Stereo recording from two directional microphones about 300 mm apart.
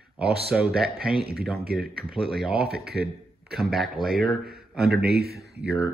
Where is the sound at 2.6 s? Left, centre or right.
Right.